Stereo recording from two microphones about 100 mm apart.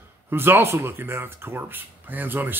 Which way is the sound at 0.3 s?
20° right (ahead or behind).